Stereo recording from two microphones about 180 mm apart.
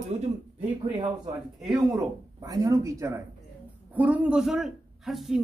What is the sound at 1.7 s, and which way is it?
A man's voice, 20° right (ahead or behind).